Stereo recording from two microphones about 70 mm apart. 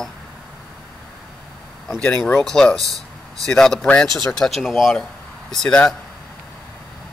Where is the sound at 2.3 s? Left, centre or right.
Centre.